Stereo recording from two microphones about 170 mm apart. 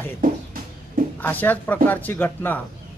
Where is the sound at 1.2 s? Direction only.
10° left (ahead or behind).